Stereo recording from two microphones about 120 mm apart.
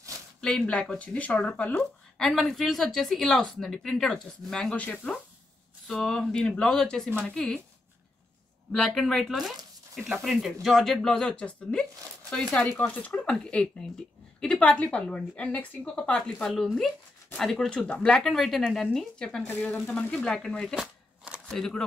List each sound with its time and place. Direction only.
0.4 s speech: 5° left (ahead or behind)
8.7 s a woman's voice: 5° left (ahead or behind)
19.5 s a woman's voice: 15° left (ahead or behind)
19.9 s speech: 5° left (ahead or behind)
20.7 s shuffling cards: 10° right (ahead or behind)
21.5 s speech: 5° left (ahead or behind)